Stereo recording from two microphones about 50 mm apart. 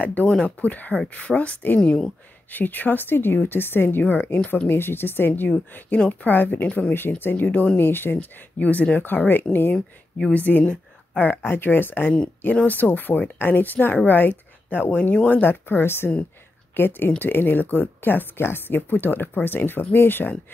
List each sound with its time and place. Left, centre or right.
0.0 s speech: left
1.8 s speech: centre
2.5 s a woman's voice: left
4.0 s speech: left
4.6 s a woman's voice: left
5.9 s speech: left
6.3 s a woman's voice: left
8.5 s speech: left
9.8 s speech: centre
10.3 s a woman's voice: left
11.4 s a woman's voice: left